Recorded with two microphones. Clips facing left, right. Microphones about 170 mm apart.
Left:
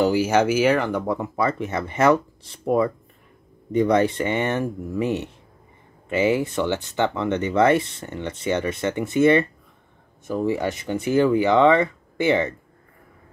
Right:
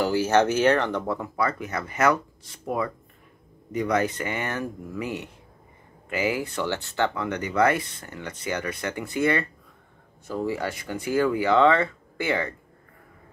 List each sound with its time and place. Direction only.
0.0 s speech: 15° left (ahead or behind)